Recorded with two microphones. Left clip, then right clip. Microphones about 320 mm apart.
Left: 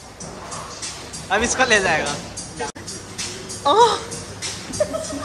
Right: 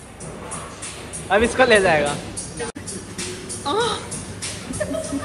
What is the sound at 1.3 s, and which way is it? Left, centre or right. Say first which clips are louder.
Speech: right 2 dB; centre.